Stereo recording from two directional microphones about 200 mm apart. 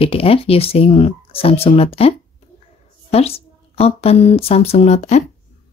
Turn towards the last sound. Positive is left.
turn(degrees=35)  # may be behind; listen again after turning